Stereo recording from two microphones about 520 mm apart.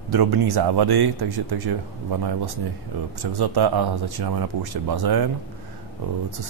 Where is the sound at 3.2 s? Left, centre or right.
Right.